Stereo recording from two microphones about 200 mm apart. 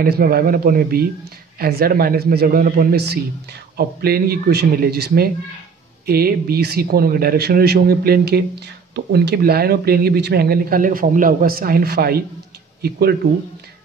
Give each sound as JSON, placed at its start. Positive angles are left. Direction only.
{"t": 0.0, "sound": "speech", "side_deg": -50}